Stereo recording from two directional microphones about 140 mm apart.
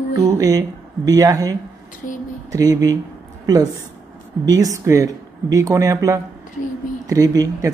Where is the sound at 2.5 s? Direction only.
25° right (ahead or behind).